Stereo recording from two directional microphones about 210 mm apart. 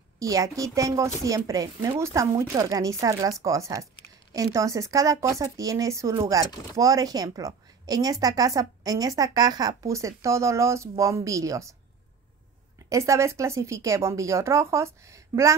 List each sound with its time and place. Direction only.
0.2 s speech: 15° right (ahead or behind)
12.9 s speech: 15° right (ahead or behind)